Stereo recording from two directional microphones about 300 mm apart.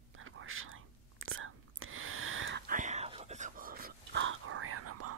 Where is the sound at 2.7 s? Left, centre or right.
Right.